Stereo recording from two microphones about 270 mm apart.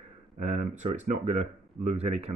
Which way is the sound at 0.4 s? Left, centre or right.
Right.